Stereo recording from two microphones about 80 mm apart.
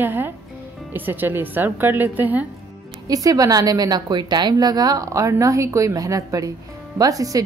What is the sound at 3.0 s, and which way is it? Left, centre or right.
Speech, right.